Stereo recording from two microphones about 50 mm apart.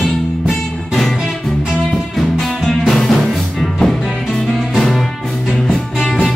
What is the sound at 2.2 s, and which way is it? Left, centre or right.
Music, centre.